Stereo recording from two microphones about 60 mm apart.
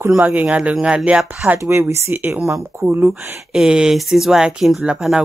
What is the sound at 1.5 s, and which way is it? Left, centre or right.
Speech, right.